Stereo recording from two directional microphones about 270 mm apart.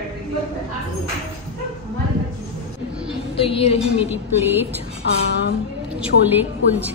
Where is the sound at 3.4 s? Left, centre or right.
Left.